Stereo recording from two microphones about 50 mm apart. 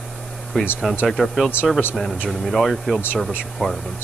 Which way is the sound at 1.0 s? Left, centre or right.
Centre.